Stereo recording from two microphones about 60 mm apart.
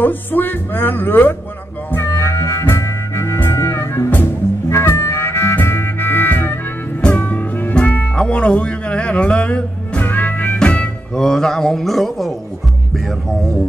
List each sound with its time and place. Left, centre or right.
0.0 s music: left
2.0 s music: left
10.6 s music: centre
11.2 s a sound: centre